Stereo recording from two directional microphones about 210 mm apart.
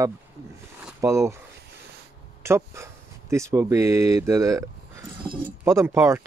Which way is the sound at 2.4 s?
10° right (ahead or behind).